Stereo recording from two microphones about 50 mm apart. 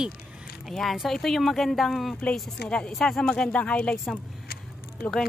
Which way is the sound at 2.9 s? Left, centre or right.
Centre.